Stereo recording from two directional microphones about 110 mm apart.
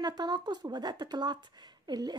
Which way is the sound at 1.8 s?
40° right (ahead or behind).